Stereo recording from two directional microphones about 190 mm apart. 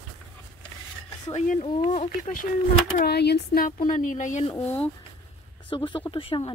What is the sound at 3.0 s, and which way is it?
Speech, 60° left (ahead or behind).